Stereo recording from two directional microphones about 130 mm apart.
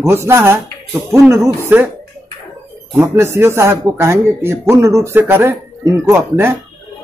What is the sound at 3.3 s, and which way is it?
Speech, 20° right (ahead or behind).